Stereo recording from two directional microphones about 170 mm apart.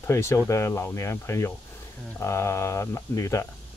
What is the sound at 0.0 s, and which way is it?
Speech, 15° left (ahead or behind).